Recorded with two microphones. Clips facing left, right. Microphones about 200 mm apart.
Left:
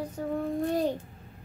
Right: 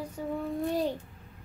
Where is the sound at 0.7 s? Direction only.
50° left (ahead or behind).